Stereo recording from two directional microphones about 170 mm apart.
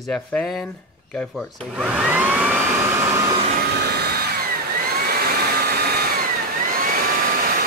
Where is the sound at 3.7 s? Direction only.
70° right (ahead or behind); by 7.1 s 55° right (ahead or behind).